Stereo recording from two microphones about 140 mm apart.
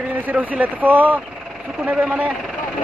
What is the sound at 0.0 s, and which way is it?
A man's voice, 10° right (ahead or behind).